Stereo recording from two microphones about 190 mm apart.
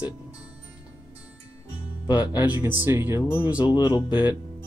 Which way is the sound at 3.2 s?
15° left (ahead or behind).